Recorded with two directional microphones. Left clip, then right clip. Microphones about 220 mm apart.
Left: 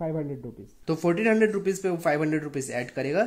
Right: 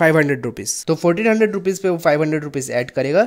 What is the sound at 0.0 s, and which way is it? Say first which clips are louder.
Speech: right 17 dB; 55° right (ahead or behind).